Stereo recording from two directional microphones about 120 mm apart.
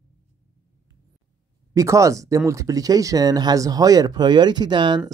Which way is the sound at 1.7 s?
25° right (ahead or behind).